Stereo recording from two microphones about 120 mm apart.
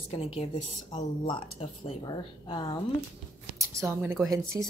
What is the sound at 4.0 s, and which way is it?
Speech, 15° right (ahead or behind).